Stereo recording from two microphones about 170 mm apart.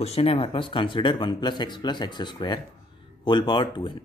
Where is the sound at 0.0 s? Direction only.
35° left (ahead or behind).